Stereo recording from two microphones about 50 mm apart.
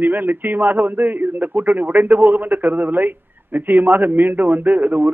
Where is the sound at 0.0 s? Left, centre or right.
Right.